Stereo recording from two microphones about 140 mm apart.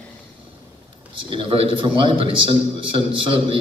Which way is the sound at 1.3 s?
40° right (ahead or behind).